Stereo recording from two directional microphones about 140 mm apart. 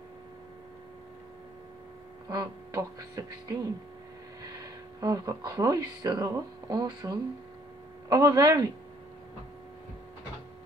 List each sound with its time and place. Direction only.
2.2 s speech: 25° right (ahead or behind)
5.0 s speech: 25° right (ahead or behind)